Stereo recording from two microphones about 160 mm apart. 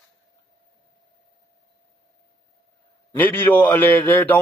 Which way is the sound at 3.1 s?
10° left (ahead or behind).